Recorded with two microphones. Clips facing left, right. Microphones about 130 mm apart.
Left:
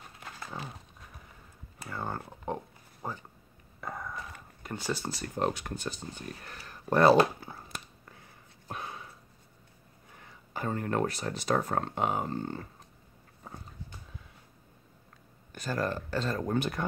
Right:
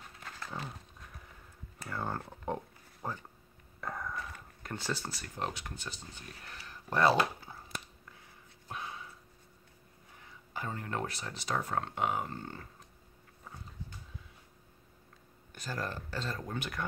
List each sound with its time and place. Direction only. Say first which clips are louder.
0.2 s dog: left 1 dB; 10° left (ahead or behind)
1.9 s a sound: left 1 dB; 5° left (ahead or behind)
5.0 s speech: left 6 dB; 25° left (ahead or behind)
5.3 s speech: left 8 dB; 45° left (ahead or behind)
8.6 s a sound: left 2 dB; 50° left (ahead or behind)
10.5 s speech: left 7 dB; 50° left (ahead or behind); by 12.6 s 30° left (ahead or behind)
15.5 s speech: left 7 dB; 60° left (ahead or behind)
16.5 s speech: left 8 dB; 30° left (ahead or behind)